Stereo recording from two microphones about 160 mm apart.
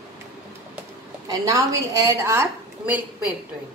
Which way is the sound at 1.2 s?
20° right (ahead or behind).